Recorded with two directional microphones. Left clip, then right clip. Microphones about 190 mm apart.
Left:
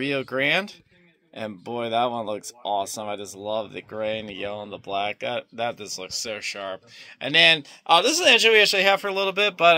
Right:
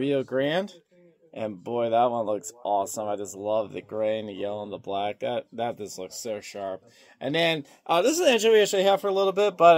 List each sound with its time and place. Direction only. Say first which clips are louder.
0.0 s speech: left 1 dB; 25° right (ahead or behind)
1.6 s speech: right 1 dB; 5° left (ahead or behind)
4.2 s speech: even; 50° left (ahead or behind)
4.5 s speech: even; 10° left (ahead or behind)
4.9 s speech: left 2 dB; 30° right (ahead or behind)
8.9 s speech: even; 5° right (ahead or behind)